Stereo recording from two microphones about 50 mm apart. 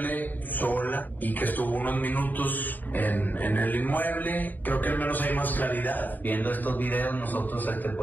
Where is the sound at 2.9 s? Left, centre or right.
Left.